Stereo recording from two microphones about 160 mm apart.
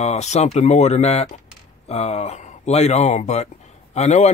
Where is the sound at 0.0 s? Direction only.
45° left (ahead or behind).